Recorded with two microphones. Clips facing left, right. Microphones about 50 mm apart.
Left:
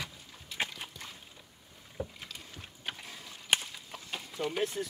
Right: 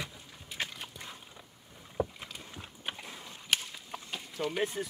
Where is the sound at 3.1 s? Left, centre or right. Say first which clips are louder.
Right 1 dB; right.